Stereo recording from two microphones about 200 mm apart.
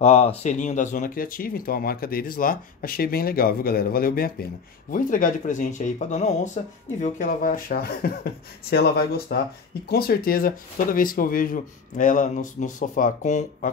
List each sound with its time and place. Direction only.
0.0 s speech: 30° left (ahead or behind)